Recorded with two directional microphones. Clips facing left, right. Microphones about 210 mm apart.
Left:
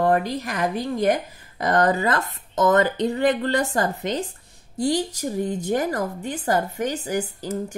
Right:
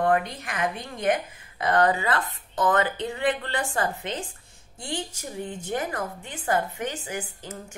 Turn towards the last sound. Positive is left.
turn(degrees=40)  # may be behind; listen again after turning